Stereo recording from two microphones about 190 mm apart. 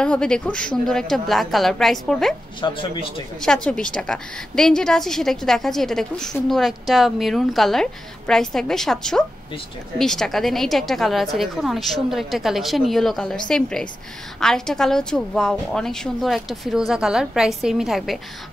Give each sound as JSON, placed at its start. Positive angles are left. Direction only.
{"t": 0.0, "sound": "a woman's voice", "side_deg": 5}
{"t": 2.6, "sound": "speech", "side_deg": 25}
{"t": 3.3, "sound": "a woman's voice", "side_deg": 5}